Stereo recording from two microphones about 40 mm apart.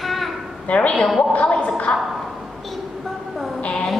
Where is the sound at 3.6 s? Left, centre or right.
Left.